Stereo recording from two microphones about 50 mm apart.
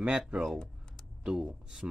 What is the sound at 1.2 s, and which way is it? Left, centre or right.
Speech, centre.